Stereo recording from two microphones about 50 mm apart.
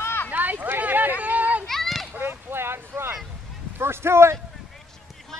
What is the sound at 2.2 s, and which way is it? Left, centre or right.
Boat, right.